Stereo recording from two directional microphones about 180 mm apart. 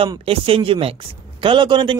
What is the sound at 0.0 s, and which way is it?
A man's voice, 30° right (ahead or behind).